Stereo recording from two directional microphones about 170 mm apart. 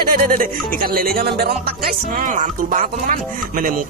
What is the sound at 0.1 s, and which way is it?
Speech, 55° right (ahead or behind).